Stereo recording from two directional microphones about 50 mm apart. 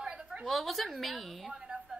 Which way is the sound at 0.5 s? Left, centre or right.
Centre.